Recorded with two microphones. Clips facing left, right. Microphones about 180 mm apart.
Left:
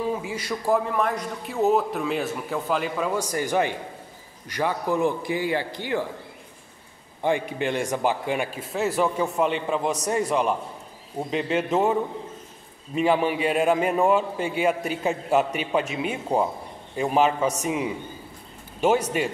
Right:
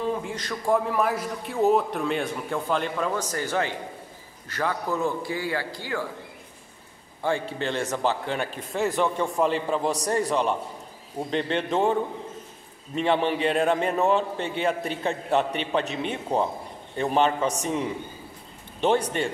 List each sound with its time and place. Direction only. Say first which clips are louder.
0.0 s a man's voice: left 1 dB; 5° left (ahead or behind)
7.2 s a man's voice: left 2 dB; 15° left (ahead or behind)